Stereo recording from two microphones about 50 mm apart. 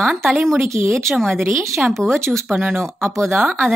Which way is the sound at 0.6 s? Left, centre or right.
Right.